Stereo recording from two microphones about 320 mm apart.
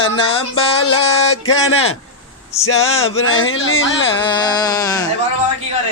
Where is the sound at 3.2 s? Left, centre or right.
Left.